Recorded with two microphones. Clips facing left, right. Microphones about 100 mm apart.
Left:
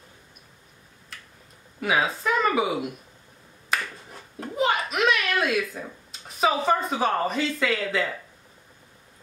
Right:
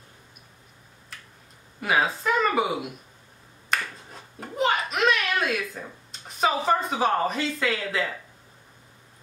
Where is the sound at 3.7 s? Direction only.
5° left (ahead or behind).